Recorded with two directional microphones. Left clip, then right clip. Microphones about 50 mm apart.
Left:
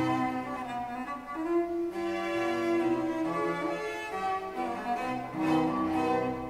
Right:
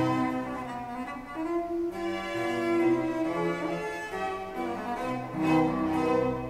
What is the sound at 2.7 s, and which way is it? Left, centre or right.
Cello, right.